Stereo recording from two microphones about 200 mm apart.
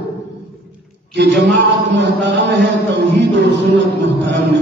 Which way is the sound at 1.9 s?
60° right (ahead or behind).